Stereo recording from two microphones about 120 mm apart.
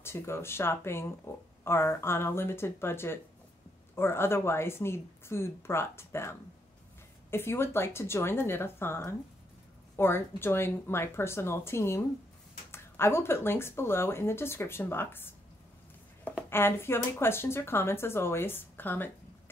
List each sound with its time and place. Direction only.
0.0 s speech: 20° left (ahead or behind)
16.4 s speech: 20° left (ahead or behind)